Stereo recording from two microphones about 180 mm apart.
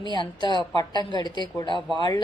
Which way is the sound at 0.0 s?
25° left (ahead or behind).